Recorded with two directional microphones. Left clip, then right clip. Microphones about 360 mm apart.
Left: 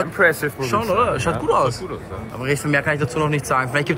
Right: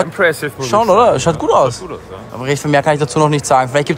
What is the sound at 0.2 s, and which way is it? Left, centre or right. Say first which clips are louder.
Speech: even; right.